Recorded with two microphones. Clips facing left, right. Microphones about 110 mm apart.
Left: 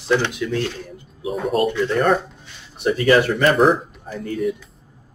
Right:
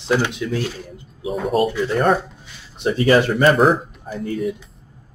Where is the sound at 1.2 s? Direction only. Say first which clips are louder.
Right 1 dB; centre (ahead or behind).